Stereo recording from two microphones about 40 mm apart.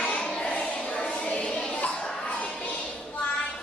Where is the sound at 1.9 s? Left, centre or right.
Left.